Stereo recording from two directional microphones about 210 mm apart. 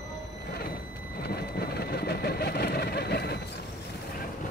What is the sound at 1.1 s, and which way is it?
Vehicle, 50° left (ahead or behind).